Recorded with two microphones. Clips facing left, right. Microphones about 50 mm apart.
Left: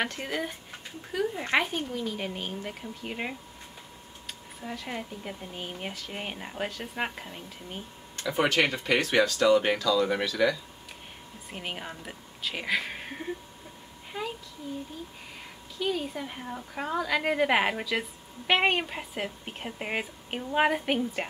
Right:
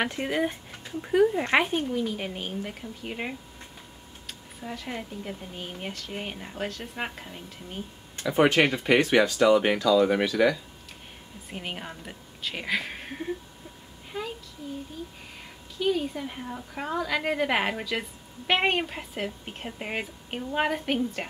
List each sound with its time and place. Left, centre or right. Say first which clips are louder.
0.0 s speech: right 4 dB; centre
8.8 s speech: right 3 dB; centre
11.5 s a woman's voice: right 1 dB; centre
14.1 s child singing: even; centre
15.8 s speech: right 4 dB; centre